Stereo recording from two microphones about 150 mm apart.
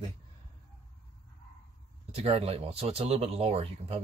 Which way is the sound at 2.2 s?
45° right (ahead or behind).